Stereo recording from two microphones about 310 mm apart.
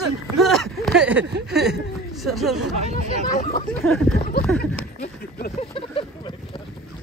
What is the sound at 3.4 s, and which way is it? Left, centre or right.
Speech, left.